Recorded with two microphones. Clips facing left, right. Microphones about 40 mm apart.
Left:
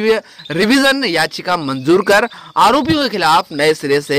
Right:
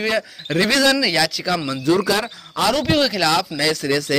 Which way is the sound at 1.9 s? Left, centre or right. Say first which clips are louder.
Left 7 dB; left.